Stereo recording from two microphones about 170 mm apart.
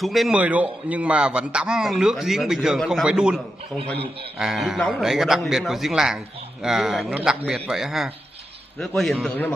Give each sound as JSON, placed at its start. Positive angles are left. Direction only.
{"t": 0.0, "sound": "a man's voice", "side_deg": 0}
{"t": 3.9, "sound": "a man's voice", "side_deg": -35}
{"t": 4.4, "sound": "a man's voice", "side_deg": 0}